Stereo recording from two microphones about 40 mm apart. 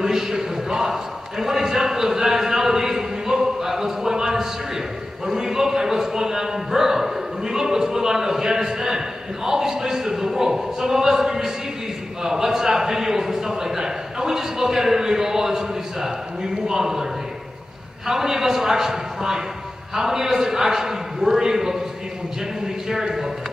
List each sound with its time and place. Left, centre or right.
0.0 s a sound: centre
18.0 s a man's voice: centre
22.8 s a man's voice: centre